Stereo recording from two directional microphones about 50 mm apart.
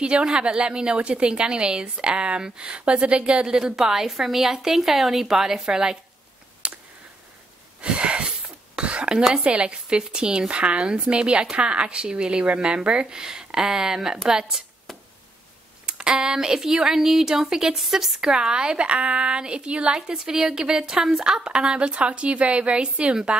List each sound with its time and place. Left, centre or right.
0.0 s speech: centre
3.5 s speech: centre
6.6 s a sound: centre
7.8 s a sound: right
9.2 s speech: centre
14.9 s chop: centre
15.8 s speech: centre
18.3 s speech: centre